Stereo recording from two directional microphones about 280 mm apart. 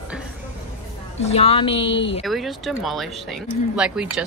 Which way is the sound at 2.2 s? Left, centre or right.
Centre.